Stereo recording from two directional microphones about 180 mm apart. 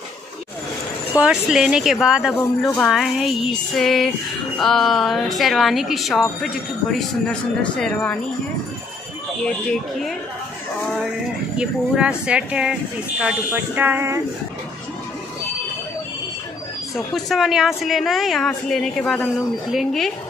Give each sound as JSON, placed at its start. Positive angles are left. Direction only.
{"t": 1.2, "sound": "a woman's voice", "side_deg": -5}
{"t": 2.3, "sound": "a woman's voice", "side_deg": 10}
{"t": 11.5, "sound": "a woman's voice", "side_deg": -5}
{"t": 16.9, "sound": "a woman's voice", "side_deg": 0}